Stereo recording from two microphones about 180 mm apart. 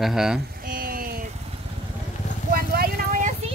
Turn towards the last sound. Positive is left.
turn(degrees=-45)  # may be behind; listen again after turning